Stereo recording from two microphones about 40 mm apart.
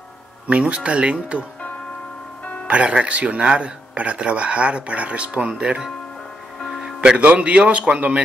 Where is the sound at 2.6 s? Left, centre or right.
Right.